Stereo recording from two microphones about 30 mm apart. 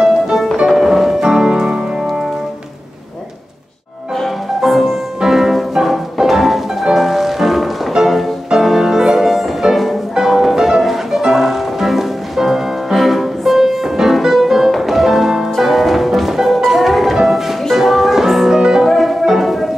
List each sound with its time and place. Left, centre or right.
0.7 s music: centre
4.6 s music: centre
18.9 s music: centre